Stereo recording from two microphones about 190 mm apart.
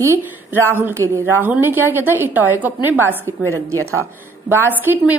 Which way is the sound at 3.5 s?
90° right.